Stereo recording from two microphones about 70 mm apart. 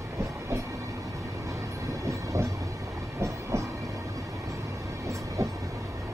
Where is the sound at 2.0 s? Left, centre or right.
Right.